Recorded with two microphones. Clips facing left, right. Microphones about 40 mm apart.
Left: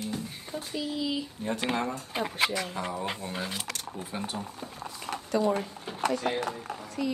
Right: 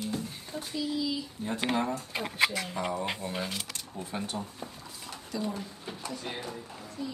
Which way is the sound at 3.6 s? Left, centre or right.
Left.